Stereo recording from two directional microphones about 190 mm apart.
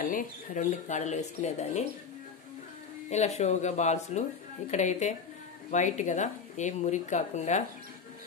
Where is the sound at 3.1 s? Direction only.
35° left (ahead or behind).